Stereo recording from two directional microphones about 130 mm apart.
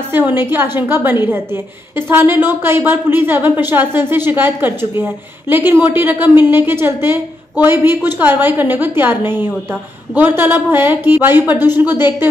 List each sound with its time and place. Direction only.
0.1 s a woman's voice: 15° right (ahead or behind)